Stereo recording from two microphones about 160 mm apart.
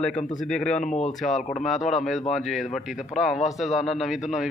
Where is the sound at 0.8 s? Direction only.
45° left (ahead or behind).